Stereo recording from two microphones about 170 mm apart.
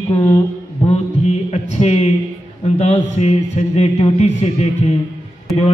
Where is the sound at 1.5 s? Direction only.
40° left (ahead or behind).